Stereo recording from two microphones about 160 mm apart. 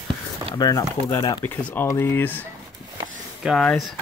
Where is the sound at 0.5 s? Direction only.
20° left (ahead or behind); by 3.9 s 5° left (ahead or behind).